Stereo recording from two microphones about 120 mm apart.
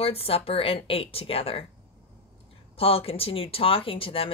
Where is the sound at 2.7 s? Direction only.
55° left (ahead or behind).